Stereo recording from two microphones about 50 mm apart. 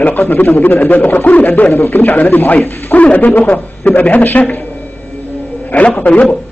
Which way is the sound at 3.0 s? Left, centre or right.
Left.